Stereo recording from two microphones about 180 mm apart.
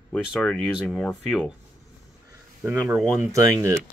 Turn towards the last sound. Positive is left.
turn(degrees=-15)  # may be behind; listen again after turning